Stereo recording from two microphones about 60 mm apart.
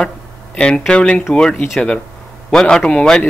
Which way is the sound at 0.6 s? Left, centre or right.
Centre.